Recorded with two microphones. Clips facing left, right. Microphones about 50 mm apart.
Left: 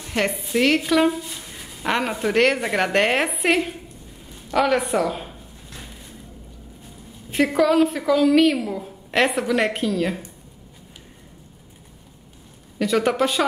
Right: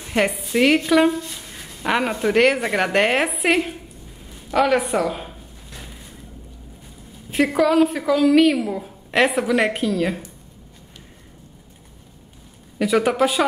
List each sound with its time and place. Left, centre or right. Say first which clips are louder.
0.0 s speech: right 3 dB; centre
4.3 s a sound: right 2 dB; centre
7.2 s speech: even; centre
12.7 s speech: right 2 dB; centre